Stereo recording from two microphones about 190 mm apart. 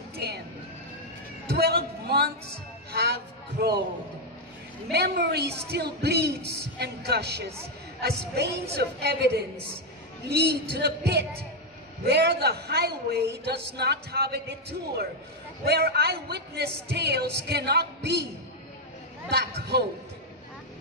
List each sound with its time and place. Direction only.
0.2 s music: 60° right (ahead or behind)
1.5 s a sound: 55° right (ahead or behind)
3.6 s a man's voice: 55° right (ahead or behind)
4.9 s a man's voice: 60° right (ahead or behind)
8.7 s a man's voice: 60° right (ahead or behind)
19.3 s a man's voice: 60° right (ahead or behind)